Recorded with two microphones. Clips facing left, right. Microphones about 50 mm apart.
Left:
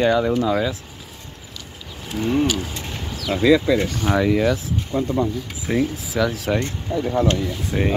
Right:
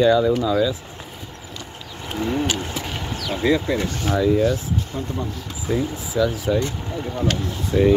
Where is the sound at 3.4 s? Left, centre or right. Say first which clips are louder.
Left 4 dB; left.